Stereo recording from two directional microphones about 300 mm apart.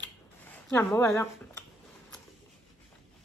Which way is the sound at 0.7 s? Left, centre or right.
Centre.